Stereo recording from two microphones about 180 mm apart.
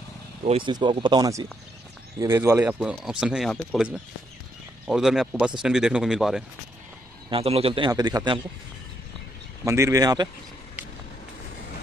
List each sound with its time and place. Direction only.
0.5 s a man's voice: 25° right (ahead or behind); by 6.4 s centre (ahead or behind)
7.2 s a man's voice: 30° right (ahead or behind)
9.7 s a man's voice: 15° right (ahead or behind)